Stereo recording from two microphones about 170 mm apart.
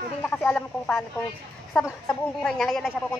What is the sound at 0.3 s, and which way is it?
A woman's voice, 10° left (ahead or behind).